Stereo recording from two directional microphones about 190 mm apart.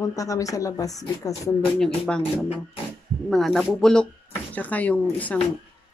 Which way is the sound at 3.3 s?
Centre (ahead or behind).